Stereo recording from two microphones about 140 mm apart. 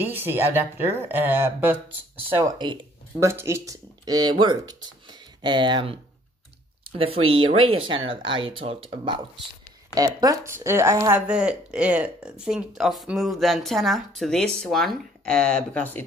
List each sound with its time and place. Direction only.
0.0 s speech: 15° right (ahead or behind)
2.6 s speech: 35° right (ahead or behind)
3.2 s speech: 20° right (ahead or behind); by 9.2 s 40° right (ahead or behind)
9.9 s speech: 25° right (ahead or behind); by 16.1 s 10° left (ahead or behind)